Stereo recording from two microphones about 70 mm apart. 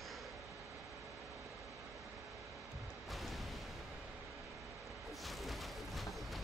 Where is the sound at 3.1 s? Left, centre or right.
Centre.